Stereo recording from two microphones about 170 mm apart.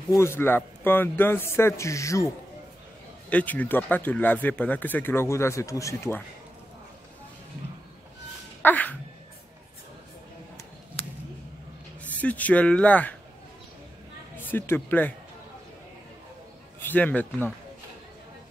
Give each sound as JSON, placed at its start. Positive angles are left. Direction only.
{"t": 0.1, "sound": "speech", "side_deg": 15}
{"t": 3.3, "sound": "speech", "side_deg": 10}
{"t": 8.6, "sound": "a sound", "side_deg": 10}
{"t": 11.0, "sound": "a sound", "side_deg": 35}
{"t": 12.0, "sound": "speech", "side_deg": 10}
{"t": 14.3, "sound": "speech", "side_deg": 10}
{"t": 16.8, "sound": "speech", "side_deg": 10}